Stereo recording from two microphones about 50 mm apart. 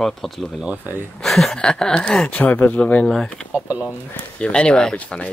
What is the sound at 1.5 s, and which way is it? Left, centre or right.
Speech, centre.